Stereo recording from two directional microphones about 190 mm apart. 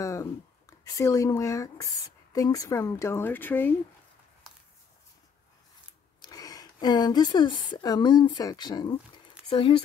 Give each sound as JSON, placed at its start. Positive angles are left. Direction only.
{"t": 0.0, "sound": "a sound", "side_deg": 15}
{"t": 0.8, "sound": "speech", "side_deg": 15}
{"t": 6.2, "sound": "speech", "side_deg": 20}